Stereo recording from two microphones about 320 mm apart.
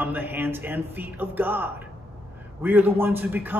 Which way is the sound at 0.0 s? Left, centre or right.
Centre.